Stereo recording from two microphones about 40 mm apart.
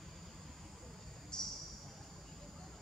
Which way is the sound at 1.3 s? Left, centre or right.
Centre.